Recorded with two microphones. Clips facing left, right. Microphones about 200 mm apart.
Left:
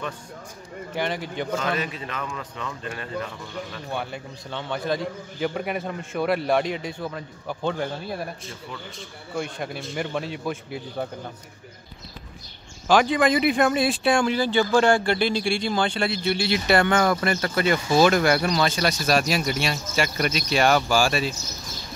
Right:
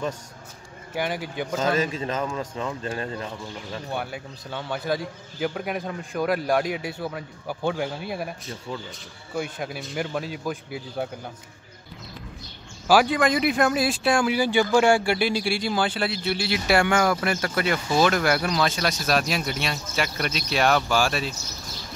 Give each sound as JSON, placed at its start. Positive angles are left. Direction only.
{"t": 0.9, "sound": "speech", "side_deg": -5}
{"t": 1.6, "sound": "speech", "side_deg": -40}
{"t": 2.2, "sound": "speech", "side_deg": -30}
{"t": 3.9, "sound": "speech", "side_deg": -5}
{"t": 9.4, "sound": "speech", "side_deg": 0}
{"t": 12.8, "sound": "speech", "side_deg": -5}